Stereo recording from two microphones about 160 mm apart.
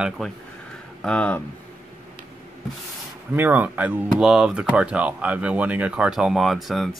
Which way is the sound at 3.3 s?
10° right (ahead or behind).